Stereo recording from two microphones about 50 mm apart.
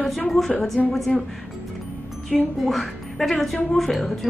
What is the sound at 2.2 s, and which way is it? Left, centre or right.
A woman's voice, centre.